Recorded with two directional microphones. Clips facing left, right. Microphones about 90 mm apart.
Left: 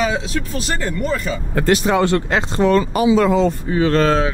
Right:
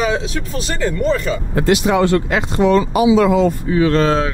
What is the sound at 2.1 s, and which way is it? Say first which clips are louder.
Speech: right 1 dB; 30° left (ahead or behind).